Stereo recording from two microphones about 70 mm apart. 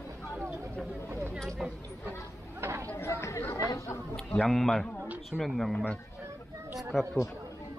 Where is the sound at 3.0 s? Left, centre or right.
Left.